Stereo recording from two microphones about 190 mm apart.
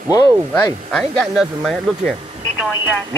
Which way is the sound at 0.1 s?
20° left (ahead or behind).